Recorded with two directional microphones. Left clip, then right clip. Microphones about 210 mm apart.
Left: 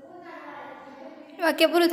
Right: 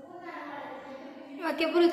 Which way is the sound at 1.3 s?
55° left (ahead or behind).